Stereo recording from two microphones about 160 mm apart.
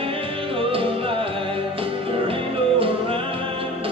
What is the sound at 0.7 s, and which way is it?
Music, 35° right (ahead or behind).